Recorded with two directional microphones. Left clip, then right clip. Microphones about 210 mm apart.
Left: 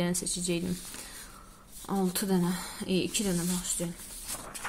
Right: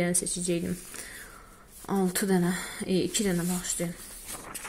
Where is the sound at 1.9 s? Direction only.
15° right (ahead or behind).